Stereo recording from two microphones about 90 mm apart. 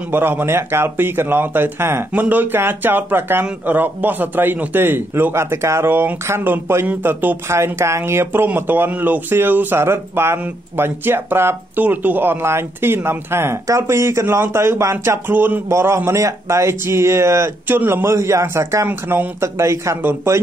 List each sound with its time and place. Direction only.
0.1 s speech: 25° right (ahead or behind)
18.9 s speech: 20° right (ahead or behind)
19.4 s speech: 30° right (ahead or behind)